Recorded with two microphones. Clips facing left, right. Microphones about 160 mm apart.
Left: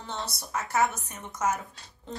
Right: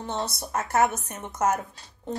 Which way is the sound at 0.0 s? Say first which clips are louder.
Right 6 dB; 50° right (ahead or behind).